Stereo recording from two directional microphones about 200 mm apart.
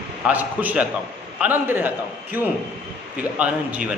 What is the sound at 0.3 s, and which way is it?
A man's voice, 10° right (ahead or behind).